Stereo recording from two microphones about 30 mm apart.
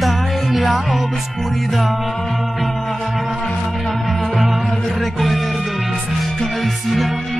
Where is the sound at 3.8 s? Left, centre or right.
Centre.